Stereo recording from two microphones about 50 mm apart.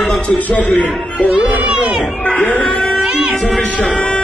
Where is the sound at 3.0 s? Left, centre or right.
Centre.